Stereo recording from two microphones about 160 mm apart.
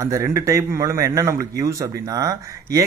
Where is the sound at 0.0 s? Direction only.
20° right (ahead or behind).